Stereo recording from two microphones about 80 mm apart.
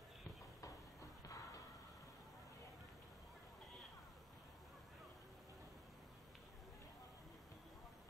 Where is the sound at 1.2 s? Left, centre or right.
Left.